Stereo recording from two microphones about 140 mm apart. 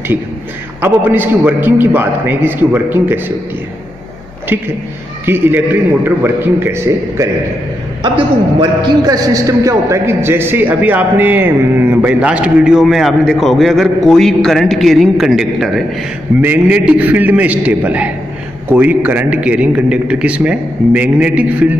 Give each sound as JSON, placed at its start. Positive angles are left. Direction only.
{"t": 0.7, "sound": "a man's voice", "side_deg": -15}
{"t": 4.5, "sound": "a man's voice", "side_deg": -15}
{"t": 8.0, "sound": "a man's voice", "side_deg": -35}